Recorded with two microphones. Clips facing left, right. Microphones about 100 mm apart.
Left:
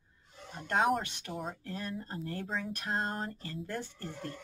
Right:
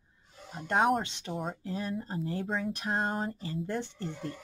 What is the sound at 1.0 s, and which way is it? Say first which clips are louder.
Speech: right 3 dB; 20° right (ahead or behind).